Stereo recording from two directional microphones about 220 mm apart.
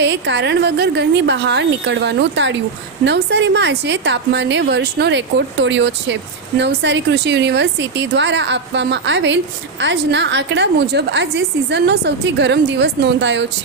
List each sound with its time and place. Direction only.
0.0 s speech: 50° right (ahead or behind)